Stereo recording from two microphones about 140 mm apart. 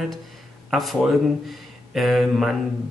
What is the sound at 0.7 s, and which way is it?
Speech, centre (ahead or behind).